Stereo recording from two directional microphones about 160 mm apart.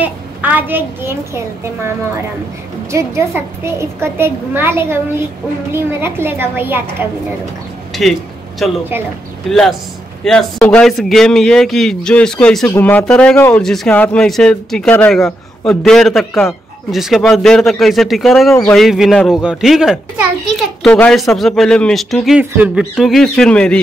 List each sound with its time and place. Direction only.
0.0 s a woman's voice: 10° right (ahead or behind)
2.9 s a woman's voice: 15° right (ahead or behind)
8.6 s speech: centre (ahead or behind)